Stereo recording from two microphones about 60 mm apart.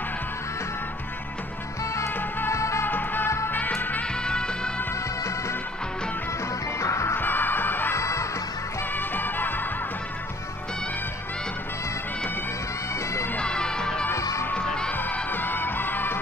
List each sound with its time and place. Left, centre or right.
2.5 s music: left
2.8 s music: left
3.3 s music: left
4.2 s music: centre
6.8 s music: left
7.2 s music: left
7.9 s music: left
8.9 s music: left
13.4 s music: centre
15.2 s music: left